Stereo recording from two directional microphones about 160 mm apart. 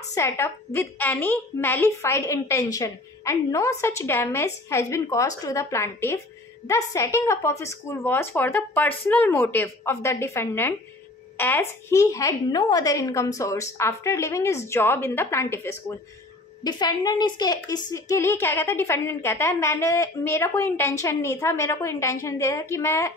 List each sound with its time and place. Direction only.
0.1 s a woman's voice: 15° left (ahead or behind)